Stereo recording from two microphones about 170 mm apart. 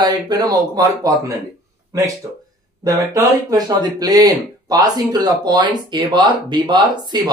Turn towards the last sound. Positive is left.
turn(degrees=-25)  # may be behind; listen again after turning